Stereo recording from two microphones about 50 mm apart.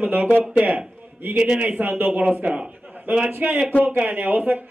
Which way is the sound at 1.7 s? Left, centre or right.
Right.